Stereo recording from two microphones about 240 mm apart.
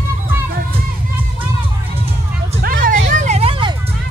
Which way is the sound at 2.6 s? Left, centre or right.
Right.